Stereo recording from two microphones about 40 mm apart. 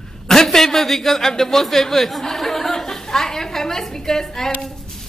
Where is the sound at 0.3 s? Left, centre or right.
Centre.